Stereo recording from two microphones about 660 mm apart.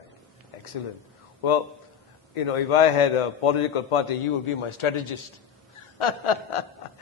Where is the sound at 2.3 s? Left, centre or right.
Left.